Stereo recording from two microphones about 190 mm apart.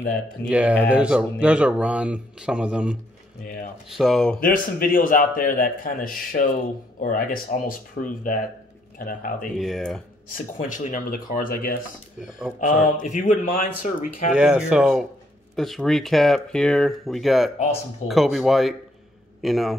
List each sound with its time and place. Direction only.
0.5 s speech: 5° right (ahead or behind)
4.4 s a man's voice: 50° left (ahead or behind)
9.6 s speech: centre (ahead or behind)
10.3 s a man's voice: 45° left (ahead or behind)
14.3 s speech: 5° right (ahead or behind)